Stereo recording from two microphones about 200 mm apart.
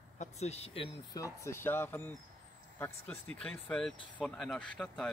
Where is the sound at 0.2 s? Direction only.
30° left (ahead or behind).